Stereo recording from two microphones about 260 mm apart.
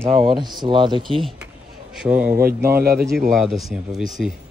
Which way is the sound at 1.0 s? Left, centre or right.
Centre.